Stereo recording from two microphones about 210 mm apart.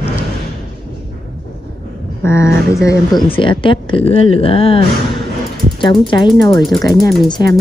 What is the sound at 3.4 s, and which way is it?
Speech, 25° left (ahead or behind).